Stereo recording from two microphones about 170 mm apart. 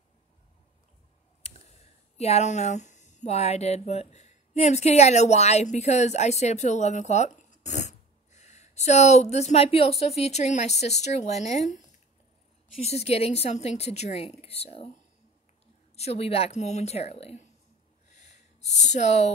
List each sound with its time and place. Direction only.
1.4 s speech: 40° left (ahead or behind)
12.8 s a woman's voice: 40° left (ahead or behind)
16.0 s a woman's voice: 35° left (ahead or behind)
18.2 s a sound: 40° left (ahead or behind)